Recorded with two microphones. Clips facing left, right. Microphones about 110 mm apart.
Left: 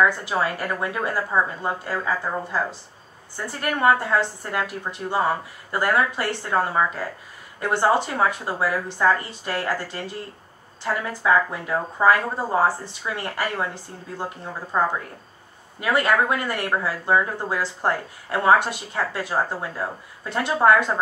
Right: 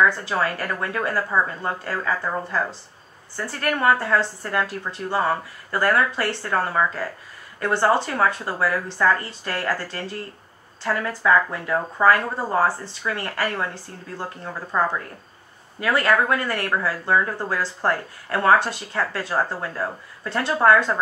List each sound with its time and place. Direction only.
0.0 s a woman's voice: 15° left (ahead or behind)